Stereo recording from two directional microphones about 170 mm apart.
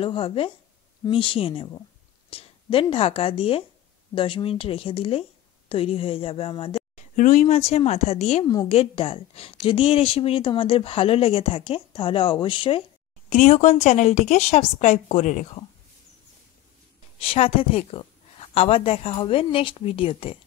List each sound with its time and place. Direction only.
0.0 s speech: 30° left (ahead or behind)
7.2 s speech: 50° left (ahead or behind)
8.5 s a woman's voice: 25° left (ahead or behind)
8.7 s speech: 35° left (ahead or behind)
13.3 s a woman's voice: 45° left (ahead or behind)
17.2 s speech: 35° left (ahead or behind)